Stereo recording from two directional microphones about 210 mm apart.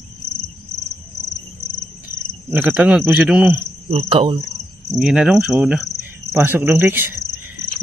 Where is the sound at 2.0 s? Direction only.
10° right (ahead or behind).